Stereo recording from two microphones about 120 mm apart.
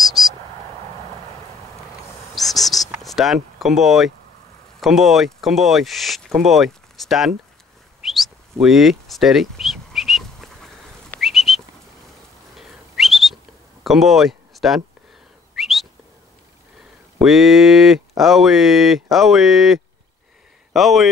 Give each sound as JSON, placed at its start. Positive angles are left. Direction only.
{"t": 0.0, "sound": "a sound", "side_deg": 0}
{"t": 2.3, "sound": "cricket", "side_deg": 0}
{"t": 3.0, "sound": "speech", "side_deg": 0}
{"t": 8.1, "sound": "a sound", "side_deg": 0}
{"t": 11.1, "sound": "whistling", "side_deg": 0}
{"t": 13.8, "sound": "speech", "side_deg": 0}
{"t": 15.5, "sound": "whistle", "side_deg": 0}
{"t": 17.2, "sound": "speech", "side_deg": 0}